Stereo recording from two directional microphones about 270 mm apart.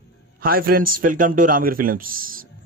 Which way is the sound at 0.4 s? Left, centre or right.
Right.